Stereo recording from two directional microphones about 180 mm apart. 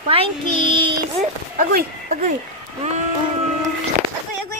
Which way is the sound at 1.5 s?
50° right (ahead or behind).